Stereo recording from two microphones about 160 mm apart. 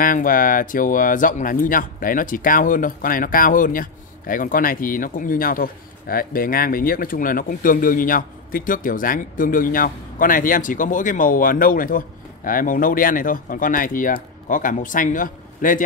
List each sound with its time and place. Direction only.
0.0 s speech: 60° left (ahead or behind)